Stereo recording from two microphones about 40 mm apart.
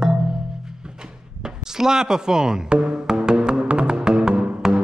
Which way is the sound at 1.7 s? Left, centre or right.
Centre.